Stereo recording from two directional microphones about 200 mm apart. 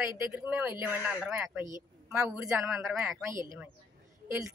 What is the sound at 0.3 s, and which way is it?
Speech, 5° right (ahead or behind).